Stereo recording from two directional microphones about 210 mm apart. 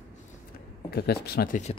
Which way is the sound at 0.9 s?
50° left (ahead or behind).